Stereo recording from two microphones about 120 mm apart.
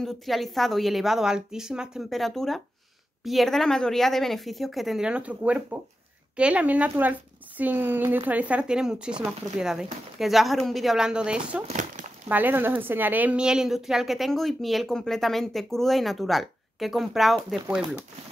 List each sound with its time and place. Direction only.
0.0 s speech: centre (ahead or behind)
11.6 s a sound: 90° right
12.3 s speech: 15° right (ahead or behind)